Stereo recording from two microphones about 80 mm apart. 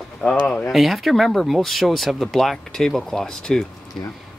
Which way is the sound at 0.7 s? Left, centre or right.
Centre.